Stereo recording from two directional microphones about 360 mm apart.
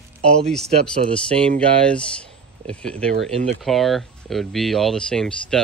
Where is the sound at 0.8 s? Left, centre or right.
Centre.